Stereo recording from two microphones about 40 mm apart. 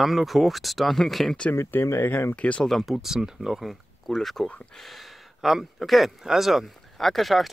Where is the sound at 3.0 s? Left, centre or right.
Centre.